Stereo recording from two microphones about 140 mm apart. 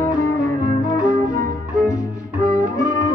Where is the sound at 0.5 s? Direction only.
25° left (ahead or behind).